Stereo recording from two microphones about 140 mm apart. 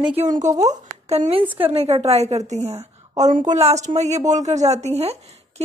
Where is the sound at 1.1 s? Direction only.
45° right (ahead or behind).